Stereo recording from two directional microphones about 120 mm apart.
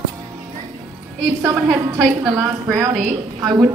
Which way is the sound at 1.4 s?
20° right (ahead or behind).